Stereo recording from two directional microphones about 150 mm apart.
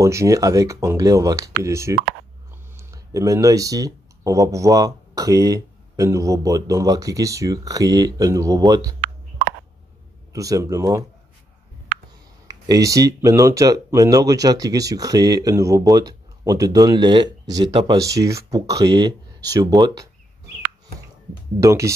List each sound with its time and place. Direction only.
0.0 s speech: 20° right (ahead or behind)
10.3 s speech: 20° right (ahead or behind)
12.4 s speech: 25° right (ahead or behind)
21.5 s speech: 20° right (ahead or behind)